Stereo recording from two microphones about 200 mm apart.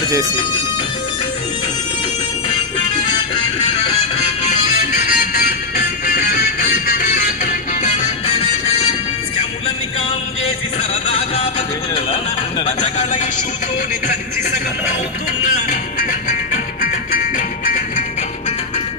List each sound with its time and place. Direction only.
5.0 s music: 45° left (ahead or behind)
11.9 s speech: 20° left (ahead or behind)
16.8 s music: 45° left (ahead or behind)